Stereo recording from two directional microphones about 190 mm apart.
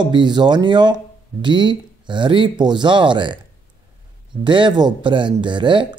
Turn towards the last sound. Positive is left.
turn(degrees=-25)  # may be behind; listen again after turning